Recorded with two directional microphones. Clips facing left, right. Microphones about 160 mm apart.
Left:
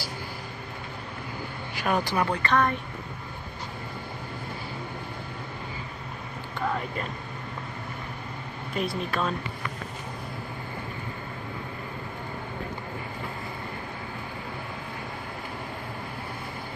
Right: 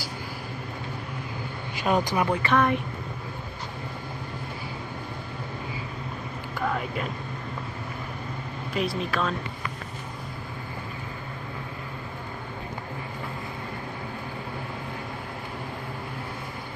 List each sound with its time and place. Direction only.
1.8 s speech: 20° right (ahead or behind)
2.2 s speech: 5° right (ahead or behind)
8.7 s speech: centre (ahead or behind)